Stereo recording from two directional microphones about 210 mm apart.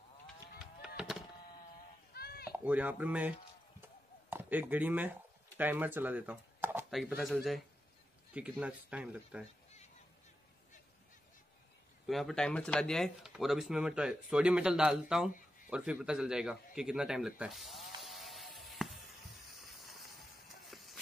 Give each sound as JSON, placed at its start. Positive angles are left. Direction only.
{"t": 0.6, "sound": "honk", "side_deg": 0}
{"t": 2.1, "sound": "a sound", "side_deg": 45}
{"t": 2.6, "sound": "speech", "side_deg": -5}
{"t": 12.1, "sound": "speech", "side_deg": 0}
{"t": 18.0, "sound": "music", "side_deg": 0}
{"t": 19.5, "sound": "a sound", "side_deg": 0}
{"t": 20.7, "sound": "run", "side_deg": 0}